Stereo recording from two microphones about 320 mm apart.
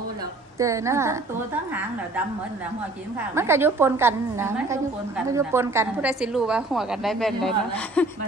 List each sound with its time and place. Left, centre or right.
0.6 s a woman's voice: centre
3.2 s a woman's voice: centre